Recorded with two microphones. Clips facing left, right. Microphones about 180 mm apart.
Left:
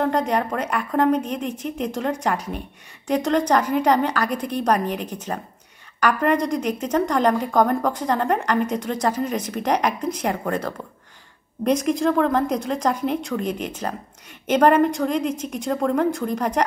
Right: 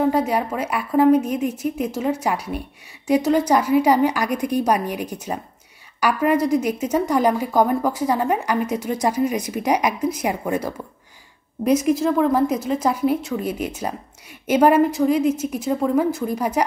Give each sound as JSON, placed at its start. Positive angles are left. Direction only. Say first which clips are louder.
{"t": 0.0, "sound": "a woman's voice", "louder": "right 2 dB", "side_deg": -5}